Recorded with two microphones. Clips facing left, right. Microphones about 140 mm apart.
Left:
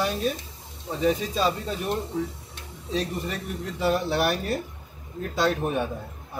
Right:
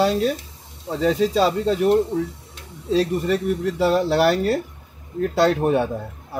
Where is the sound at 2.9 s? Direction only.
70° right (ahead or behind).